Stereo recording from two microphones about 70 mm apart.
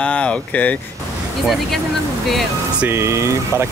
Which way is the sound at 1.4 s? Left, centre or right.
Centre.